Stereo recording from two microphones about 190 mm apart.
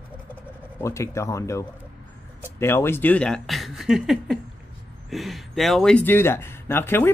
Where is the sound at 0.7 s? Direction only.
15° left (ahead or behind).